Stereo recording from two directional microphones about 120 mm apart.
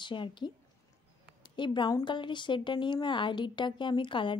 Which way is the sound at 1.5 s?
40° left (ahead or behind).